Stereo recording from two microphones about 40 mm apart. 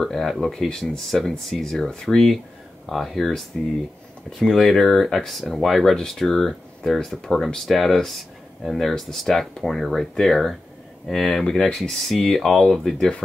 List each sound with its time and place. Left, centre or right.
0.0 s speech: centre
2.1 s speech: centre